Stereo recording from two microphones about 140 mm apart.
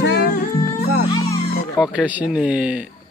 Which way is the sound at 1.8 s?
10° right (ahead or behind).